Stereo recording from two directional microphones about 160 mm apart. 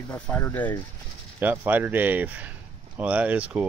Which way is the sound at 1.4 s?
10° right (ahead or behind).